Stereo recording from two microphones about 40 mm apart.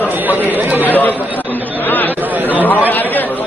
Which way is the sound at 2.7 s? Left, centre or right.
Left.